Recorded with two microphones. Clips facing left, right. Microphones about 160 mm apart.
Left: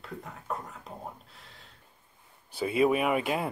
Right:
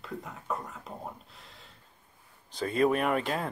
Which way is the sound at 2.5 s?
10° left (ahead or behind).